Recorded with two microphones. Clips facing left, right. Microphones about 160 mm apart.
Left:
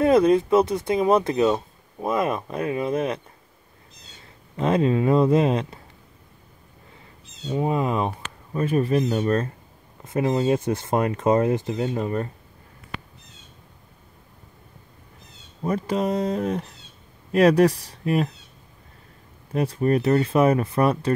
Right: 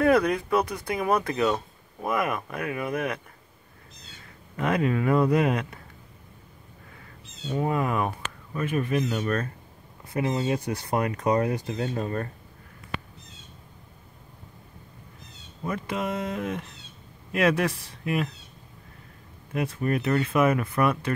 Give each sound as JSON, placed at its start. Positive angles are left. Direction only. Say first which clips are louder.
{"t": 0.0, "sound": "speech", "louder": "left 5 dB", "side_deg": 25}
{"t": 4.6, "sound": "speech", "louder": "left 4 dB", "side_deg": 25}
{"t": 7.4, "sound": "speech", "louder": "left 3 dB", "side_deg": 20}
{"t": 8.5, "sound": "speech", "louder": "left 5 dB", "side_deg": 35}
{"t": 15.6, "sound": "speech", "louder": "left 6 dB", "side_deg": 35}
{"t": 19.5, "sound": "speech", "louder": "left 5 dB", "side_deg": 35}